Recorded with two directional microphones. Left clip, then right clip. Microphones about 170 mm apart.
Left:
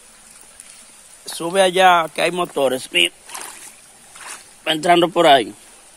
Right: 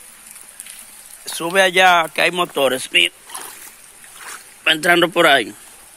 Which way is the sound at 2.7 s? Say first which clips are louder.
Right 2 dB; 25° left (ahead or behind).